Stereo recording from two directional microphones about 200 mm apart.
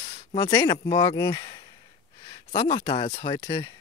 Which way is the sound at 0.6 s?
25° left (ahead or behind).